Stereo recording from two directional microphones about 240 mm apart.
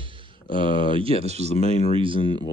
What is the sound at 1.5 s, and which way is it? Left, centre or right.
Speech, left.